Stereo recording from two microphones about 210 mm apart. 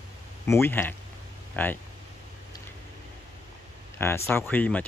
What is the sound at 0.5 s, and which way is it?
Speech, 10° left (ahead or behind).